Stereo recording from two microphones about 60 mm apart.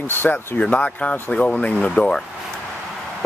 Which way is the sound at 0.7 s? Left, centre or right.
Left.